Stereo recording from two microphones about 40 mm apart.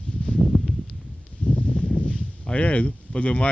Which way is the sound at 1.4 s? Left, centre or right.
Left.